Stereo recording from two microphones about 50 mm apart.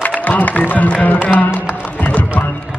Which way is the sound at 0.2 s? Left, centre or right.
Left.